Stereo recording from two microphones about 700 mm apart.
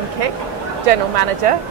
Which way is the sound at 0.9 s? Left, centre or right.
Right.